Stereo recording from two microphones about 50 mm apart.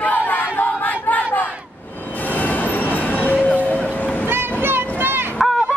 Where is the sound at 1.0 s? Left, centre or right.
Left.